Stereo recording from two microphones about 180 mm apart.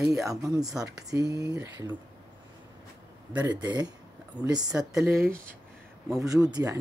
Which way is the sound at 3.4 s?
20° right (ahead or behind).